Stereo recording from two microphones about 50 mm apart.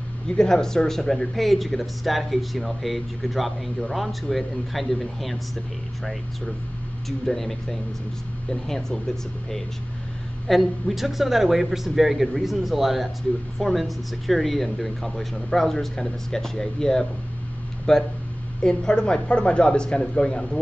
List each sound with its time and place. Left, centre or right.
0.4 s speech: centre
7.1 s speech: centre
10.5 s speech: centre